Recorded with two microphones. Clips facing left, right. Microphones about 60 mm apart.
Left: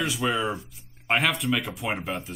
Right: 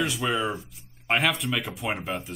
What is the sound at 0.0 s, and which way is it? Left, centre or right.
Speech, centre.